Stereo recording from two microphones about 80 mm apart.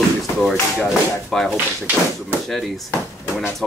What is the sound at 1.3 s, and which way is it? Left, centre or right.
Speech, centre.